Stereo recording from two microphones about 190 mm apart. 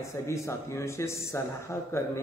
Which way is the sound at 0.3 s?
15° left (ahead or behind).